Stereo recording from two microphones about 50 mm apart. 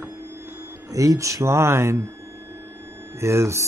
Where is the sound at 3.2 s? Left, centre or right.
Right.